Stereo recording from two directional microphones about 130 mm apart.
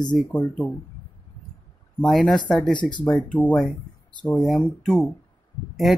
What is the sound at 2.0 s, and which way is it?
Speech, 5° left (ahead or behind).